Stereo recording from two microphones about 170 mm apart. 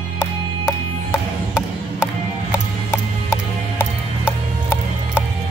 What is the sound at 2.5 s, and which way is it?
Music, 15° left (ahead or behind).